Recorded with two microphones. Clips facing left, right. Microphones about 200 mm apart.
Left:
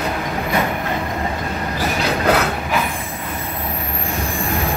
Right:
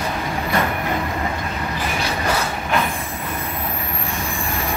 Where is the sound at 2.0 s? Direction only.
65° left (ahead or behind).